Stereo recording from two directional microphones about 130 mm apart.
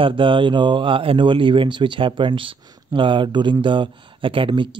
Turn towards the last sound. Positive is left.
turn(degrees=-40)  # may be behind; listen again after turning